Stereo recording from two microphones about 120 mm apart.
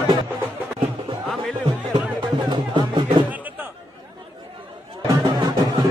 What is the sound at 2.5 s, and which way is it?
Music, 40° right (ahead or behind).